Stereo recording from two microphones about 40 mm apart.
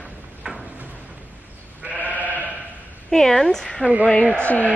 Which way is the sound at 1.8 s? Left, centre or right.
Right.